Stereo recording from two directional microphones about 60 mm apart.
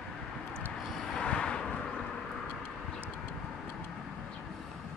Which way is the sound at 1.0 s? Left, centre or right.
Centre.